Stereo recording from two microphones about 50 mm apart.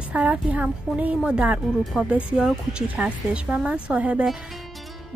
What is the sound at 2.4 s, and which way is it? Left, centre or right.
A woman's voice, centre.